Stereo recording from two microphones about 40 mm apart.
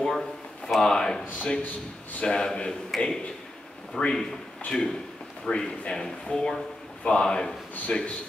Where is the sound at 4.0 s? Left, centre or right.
Centre.